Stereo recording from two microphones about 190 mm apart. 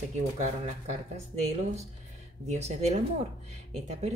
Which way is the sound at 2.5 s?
35° right (ahead or behind).